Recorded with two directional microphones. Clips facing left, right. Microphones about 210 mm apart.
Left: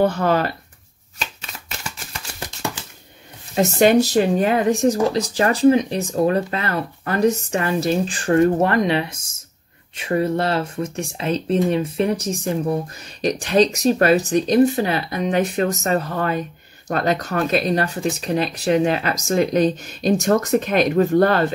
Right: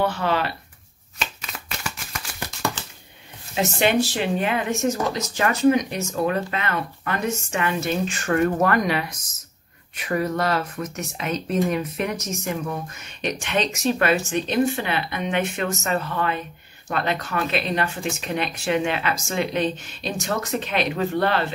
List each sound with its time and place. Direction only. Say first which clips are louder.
0.0 s speech: left 5 dB; 45° left (ahead or behind)
2.8 s a sound: even; 10° left (ahead or behind)
3.5 s speech: left 6 dB; 40° left (ahead or behind)